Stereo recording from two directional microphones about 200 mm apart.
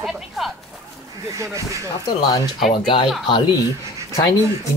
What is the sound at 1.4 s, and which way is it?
Speech, 15° right (ahead or behind).